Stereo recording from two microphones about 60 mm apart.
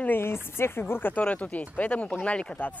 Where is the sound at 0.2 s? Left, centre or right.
Left.